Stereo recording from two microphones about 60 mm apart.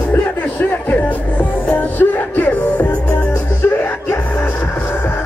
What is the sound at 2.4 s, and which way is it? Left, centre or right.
Music, left.